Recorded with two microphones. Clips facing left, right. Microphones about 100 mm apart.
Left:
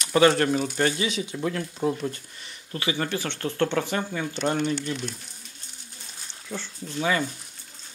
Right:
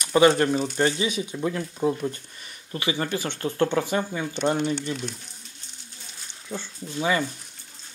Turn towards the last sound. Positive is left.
turn(degrees=-15)  # may be behind; listen again after turning